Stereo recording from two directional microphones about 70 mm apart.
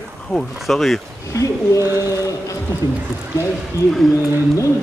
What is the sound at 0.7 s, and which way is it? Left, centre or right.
Speech, centre.